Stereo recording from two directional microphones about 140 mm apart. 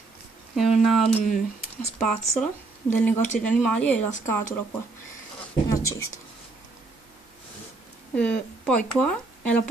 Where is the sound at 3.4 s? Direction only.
10° left (ahead or behind).